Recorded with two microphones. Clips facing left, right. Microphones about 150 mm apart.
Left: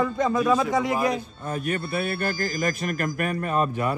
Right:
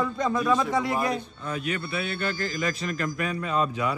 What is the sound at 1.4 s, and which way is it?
A man's voice, 45° left (ahead or behind).